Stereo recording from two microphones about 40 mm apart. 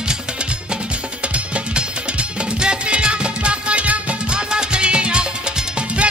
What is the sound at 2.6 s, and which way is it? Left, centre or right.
Music, right.